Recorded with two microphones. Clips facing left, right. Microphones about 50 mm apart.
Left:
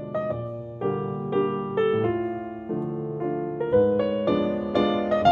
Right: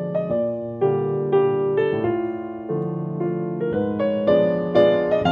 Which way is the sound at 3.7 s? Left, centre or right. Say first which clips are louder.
Left 6 dB; right.